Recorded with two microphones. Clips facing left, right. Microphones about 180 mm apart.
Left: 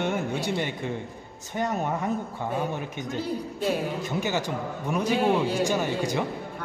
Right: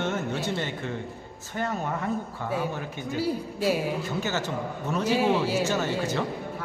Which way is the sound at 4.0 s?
15° left (ahead or behind).